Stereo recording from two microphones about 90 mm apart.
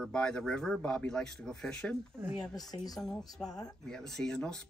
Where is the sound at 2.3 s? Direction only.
45° left (ahead or behind).